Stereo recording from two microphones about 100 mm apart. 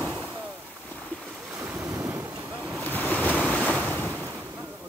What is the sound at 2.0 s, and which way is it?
Ocean, 25° right (ahead or behind).